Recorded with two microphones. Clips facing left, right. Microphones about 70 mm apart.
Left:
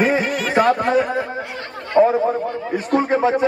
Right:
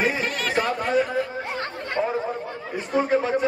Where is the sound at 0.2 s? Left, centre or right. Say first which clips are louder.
Left 5 dB; centre.